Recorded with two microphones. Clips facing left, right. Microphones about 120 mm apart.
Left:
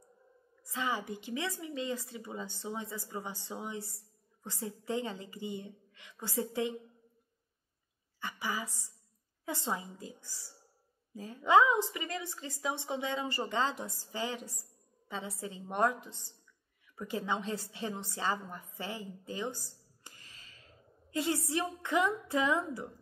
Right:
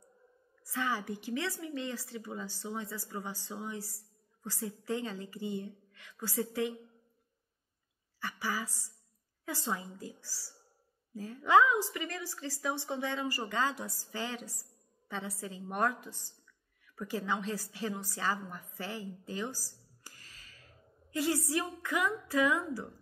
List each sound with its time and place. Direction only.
0.7 s a woman's voice: 20° left (ahead or behind)
8.2 s a woman's voice: 20° left (ahead or behind)